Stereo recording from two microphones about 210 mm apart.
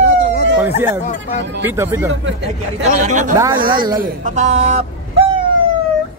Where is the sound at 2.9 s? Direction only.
35° right (ahead or behind).